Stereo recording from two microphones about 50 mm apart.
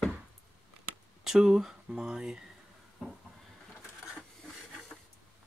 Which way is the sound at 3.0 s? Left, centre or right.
Centre.